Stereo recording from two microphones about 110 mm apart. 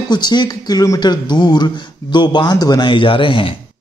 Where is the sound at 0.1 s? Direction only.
40° left (ahead or behind).